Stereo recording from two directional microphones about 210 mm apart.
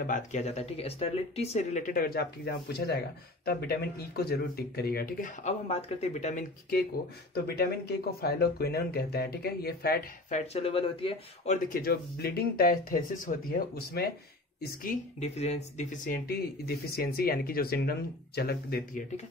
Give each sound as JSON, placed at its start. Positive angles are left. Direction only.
{"t": 0.0, "sound": "speech", "side_deg": 35}
{"t": 8.2, "sound": "speech", "side_deg": 50}
{"t": 10.3, "sound": "speech", "side_deg": 30}